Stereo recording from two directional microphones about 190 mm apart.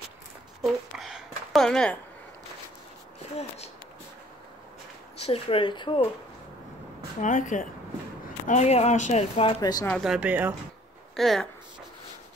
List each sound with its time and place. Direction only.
0.6 s a sound: centre (ahead or behind)
3.3 s speech: 35° left (ahead or behind)
5.2 s speech: 30° left (ahead or behind)
7.2 s speech: 40° left (ahead or behind)
9.6 s speech: 20° left (ahead or behind)
9.8 s speech: centre (ahead or behind)